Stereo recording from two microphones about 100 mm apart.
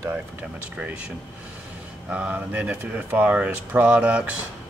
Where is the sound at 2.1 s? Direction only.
15° right (ahead or behind).